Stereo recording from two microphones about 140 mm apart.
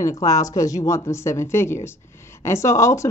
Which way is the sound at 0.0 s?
25° left (ahead or behind).